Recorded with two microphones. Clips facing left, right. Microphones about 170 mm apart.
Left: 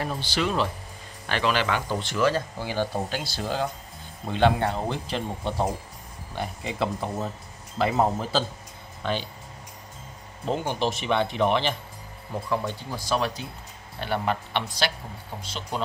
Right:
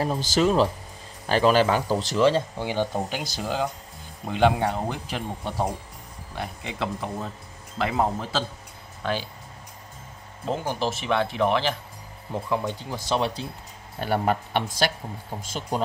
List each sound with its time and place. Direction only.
0.0 s speech: 40° right (ahead or behind); by 9.2 s 5° right (ahead or behind)
10.4 s speech: 5° right (ahead or behind)
12.4 s speech: 15° right (ahead or behind)
13.9 s speech: 45° right (ahead or behind)